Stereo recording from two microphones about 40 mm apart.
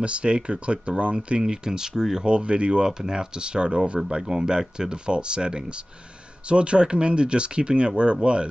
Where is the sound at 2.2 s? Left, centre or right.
Right.